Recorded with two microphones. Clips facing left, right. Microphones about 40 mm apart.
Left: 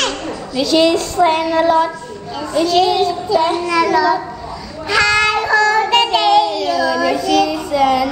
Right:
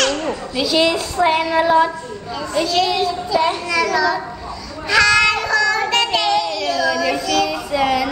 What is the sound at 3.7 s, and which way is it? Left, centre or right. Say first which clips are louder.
Speech: left 4 dB; centre.